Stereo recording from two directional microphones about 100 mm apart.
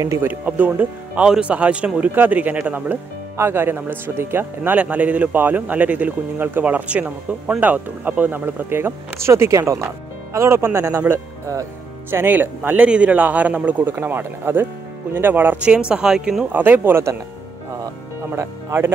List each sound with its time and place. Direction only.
0.0 s speech: 30° right (ahead or behind)
0.3 s speech: 15° right (ahead or behind)
16.5 s speech: 20° right (ahead or behind)
18.3 s speech: 25° right (ahead or behind)